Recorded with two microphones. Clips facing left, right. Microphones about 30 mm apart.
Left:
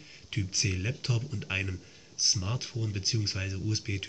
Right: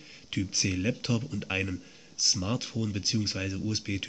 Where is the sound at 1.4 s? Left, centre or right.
Centre.